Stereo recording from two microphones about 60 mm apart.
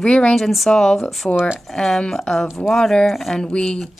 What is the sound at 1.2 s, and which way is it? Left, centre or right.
Speech, left.